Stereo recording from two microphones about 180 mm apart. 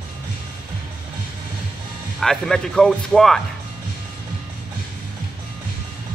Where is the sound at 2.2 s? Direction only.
Centre (ahead or behind).